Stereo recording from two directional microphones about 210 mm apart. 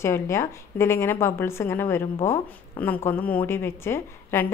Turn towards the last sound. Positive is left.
turn(degrees=10)  # may be behind; listen again after turning